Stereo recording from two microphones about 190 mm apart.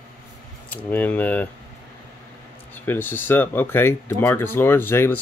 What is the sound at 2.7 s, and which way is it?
Speech, 10° left (ahead or behind).